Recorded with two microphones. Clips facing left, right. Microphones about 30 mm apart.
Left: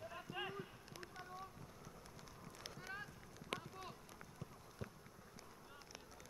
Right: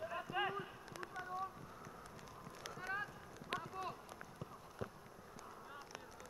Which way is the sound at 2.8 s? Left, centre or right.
Right.